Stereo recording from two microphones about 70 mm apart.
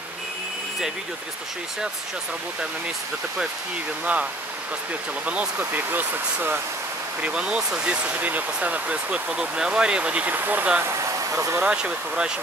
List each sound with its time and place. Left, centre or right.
4.0 s speech: centre
7.2 s speech: centre
10.3 s speech: right
10.8 s speech: right
11.6 s speech: centre